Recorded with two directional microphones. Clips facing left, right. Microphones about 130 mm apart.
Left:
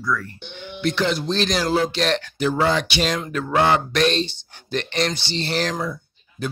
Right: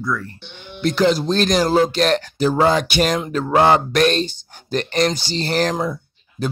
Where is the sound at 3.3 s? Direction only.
35° right (ahead or behind).